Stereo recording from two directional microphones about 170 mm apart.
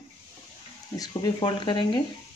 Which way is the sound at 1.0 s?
25° left (ahead or behind).